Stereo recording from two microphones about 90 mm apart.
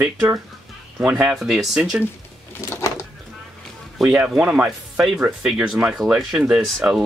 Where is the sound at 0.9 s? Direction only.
10° right (ahead or behind).